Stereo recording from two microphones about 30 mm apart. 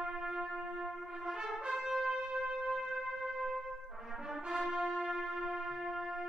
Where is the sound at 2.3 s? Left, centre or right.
Right.